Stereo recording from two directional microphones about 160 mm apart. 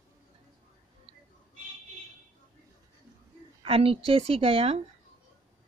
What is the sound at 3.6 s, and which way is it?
A woman's voice, 35° right (ahead or behind).